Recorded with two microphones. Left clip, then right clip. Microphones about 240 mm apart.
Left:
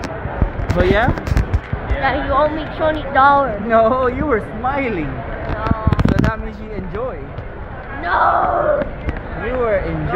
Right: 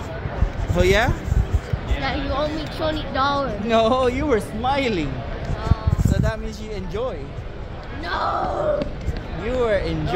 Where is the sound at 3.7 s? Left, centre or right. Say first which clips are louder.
Left 4 dB; centre.